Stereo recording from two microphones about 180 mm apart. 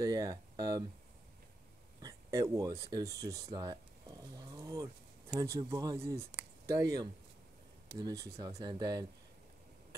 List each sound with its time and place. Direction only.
0.0 s speech: 20° right (ahead or behind)
2.0 s speech: 20° right (ahead or behind)
3.5 s a sound: 20° right (ahead or behind)
5.3 s speech: 20° right (ahead or behind)